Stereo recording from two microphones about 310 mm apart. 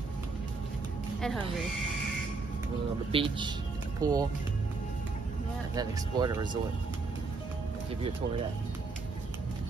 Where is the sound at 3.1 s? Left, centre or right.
Centre.